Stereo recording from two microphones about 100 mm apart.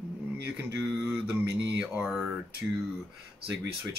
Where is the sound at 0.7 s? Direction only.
20° right (ahead or behind).